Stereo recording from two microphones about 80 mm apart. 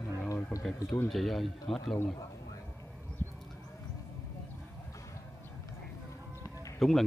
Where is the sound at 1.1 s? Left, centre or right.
Centre.